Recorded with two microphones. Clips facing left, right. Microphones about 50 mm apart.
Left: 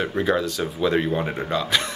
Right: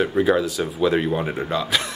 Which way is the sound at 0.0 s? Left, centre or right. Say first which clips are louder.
Right 3 dB; centre.